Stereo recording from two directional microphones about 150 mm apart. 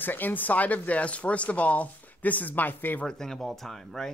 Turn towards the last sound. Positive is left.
turn(degrees=0)  # may be behind; listen again after turning